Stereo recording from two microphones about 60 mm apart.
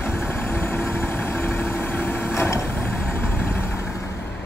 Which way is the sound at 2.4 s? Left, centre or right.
Left.